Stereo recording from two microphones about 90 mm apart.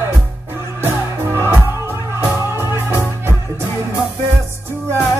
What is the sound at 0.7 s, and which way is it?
Music, 30° right (ahead or behind).